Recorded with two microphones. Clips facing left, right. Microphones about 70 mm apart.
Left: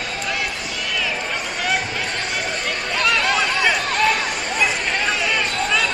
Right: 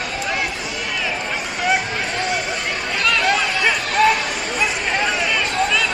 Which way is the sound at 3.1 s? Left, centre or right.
Centre.